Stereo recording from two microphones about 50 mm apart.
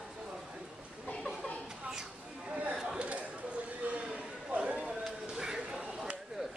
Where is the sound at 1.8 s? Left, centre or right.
Centre.